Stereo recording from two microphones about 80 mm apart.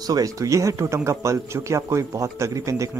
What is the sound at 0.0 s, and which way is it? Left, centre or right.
A man's voice, right.